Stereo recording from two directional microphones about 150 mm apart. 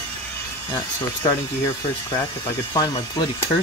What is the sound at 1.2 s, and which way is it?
Speech, 25° left (ahead or behind).